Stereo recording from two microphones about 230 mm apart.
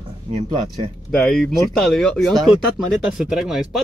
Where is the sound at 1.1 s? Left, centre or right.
Centre.